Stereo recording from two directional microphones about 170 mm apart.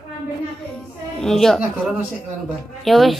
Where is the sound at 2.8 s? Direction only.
Centre (ahead or behind).